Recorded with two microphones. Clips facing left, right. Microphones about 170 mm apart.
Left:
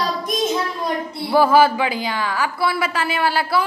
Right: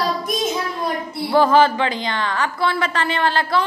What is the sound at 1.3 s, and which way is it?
Speech, 10° left (ahead or behind).